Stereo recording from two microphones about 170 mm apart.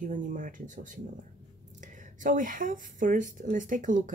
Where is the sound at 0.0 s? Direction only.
50° right (ahead or behind).